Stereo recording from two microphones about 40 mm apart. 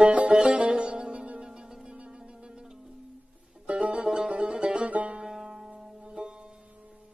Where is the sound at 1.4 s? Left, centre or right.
Centre.